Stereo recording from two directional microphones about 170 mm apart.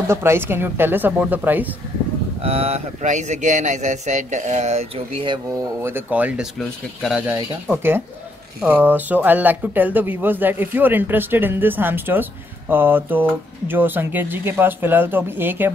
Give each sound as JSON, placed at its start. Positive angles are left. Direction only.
{"t": 0.1, "sound": "speech", "side_deg": -15}
{"t": 2.4, "sound": "speech", "side_deg": -35}
{"t": 5.8, "sound": "speech", "side_deg": -15}